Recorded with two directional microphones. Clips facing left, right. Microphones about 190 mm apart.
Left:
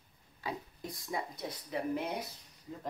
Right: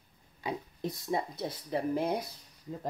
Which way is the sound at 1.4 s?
35° right (ahead or behind).